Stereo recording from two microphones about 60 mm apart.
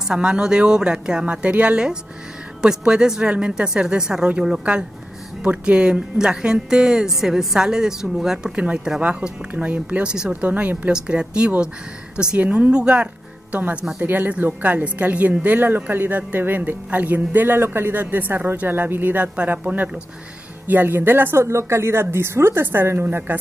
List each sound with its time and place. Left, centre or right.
0.1 s speech: centre
1.2 s a woman's voice: right
8.5 s a woman's voice: centre
10.9 s speech: centre
14.0 s a woman's voice: right
17.6 s a woman's voice: right